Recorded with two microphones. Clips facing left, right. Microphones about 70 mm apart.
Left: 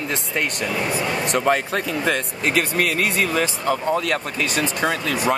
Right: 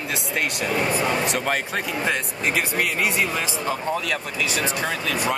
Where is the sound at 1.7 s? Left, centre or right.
Left.